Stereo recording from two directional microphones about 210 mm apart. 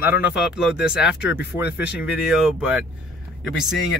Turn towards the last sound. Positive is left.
turn(degrees=0)  # may be behind; listen again after turning